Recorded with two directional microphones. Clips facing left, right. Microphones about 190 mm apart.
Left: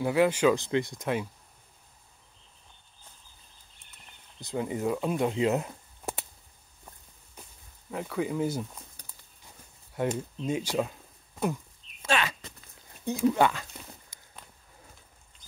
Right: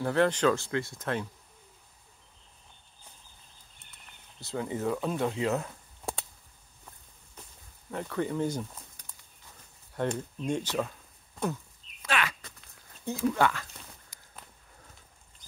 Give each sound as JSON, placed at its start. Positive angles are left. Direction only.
{"t": 0.0, "sound": "speech", "side_deg": 10}
{"t": 4.4, "sound": "speech", "side_deg": 15}
{"t": 7.9, "sound": "speech", "side_deg": 5}
{"t": 9.9, "sound": "speech", "side_deg": 10}
{"t": 12.0, "sound": "a sound", "side_deg": 25}